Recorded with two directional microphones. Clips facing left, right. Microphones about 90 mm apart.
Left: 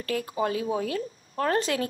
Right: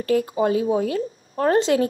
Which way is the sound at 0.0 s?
25° right (ahead or behind).